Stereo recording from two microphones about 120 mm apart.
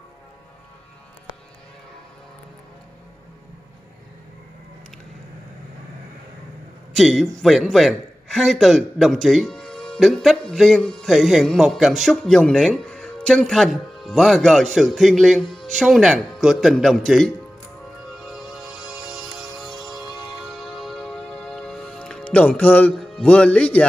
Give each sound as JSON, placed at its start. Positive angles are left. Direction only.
{"t": 7.0, "sound": "a man's voice", "side_deg": 0}
{"t": 18.2, "sound": "music", "side_deg": 0}
{"t": 20.1, "sound": "music", "side_deg": 35}
{"t": 20.3, "sound": "music", "side_deg": 0}
{"t": 22.9, "sound": "speech", "side_deg": 5}